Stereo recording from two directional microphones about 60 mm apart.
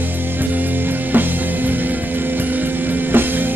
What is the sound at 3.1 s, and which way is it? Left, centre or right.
Music, right.